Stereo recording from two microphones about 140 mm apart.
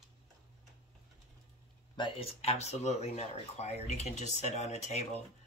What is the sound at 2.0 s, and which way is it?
Speech, 45° left (ahead or behind).